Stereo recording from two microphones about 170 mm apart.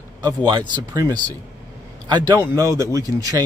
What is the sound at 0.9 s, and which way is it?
A man's voice, 20° right (ahead or behind).